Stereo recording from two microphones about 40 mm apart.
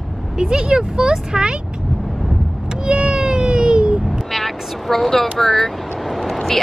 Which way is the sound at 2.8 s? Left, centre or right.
Right.